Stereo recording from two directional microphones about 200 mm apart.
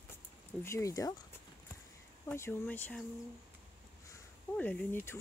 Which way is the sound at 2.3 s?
10° left (ahead or behind).